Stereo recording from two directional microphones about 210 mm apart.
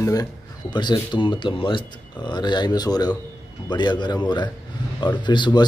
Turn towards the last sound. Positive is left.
turn(degrees=20)  # may be behind; listen again after turning